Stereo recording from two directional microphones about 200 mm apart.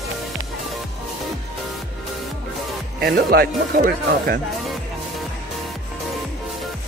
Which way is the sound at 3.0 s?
50° right (ahead or behind).